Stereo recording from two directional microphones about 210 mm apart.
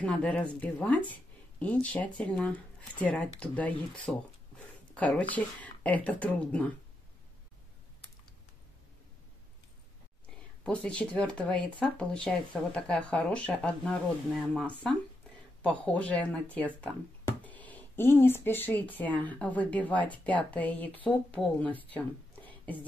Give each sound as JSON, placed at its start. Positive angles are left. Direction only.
{"t": 0.0, "sound": "speech", "side_deg": 5}
{"t": 10.6, "sound": "speech", "side_deg": 5}
{"t": 21.9, "sound": "a sound", "side_deg": 5}